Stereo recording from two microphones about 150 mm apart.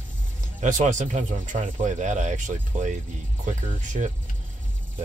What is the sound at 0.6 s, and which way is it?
Speech, 55° right (ahead or behind).